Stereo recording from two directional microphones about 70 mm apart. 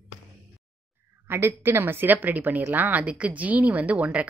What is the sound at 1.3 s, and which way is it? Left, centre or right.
A woman's voice, right.